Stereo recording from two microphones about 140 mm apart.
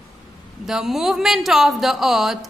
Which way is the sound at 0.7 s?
5° right (ahead or behind).